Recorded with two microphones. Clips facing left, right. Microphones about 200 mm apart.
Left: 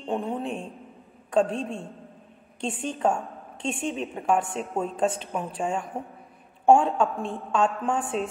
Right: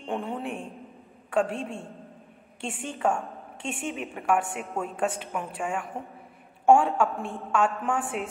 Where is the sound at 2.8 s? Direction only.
20° left (ahead or behind).